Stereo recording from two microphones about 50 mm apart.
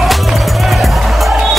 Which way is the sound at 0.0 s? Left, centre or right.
Centre.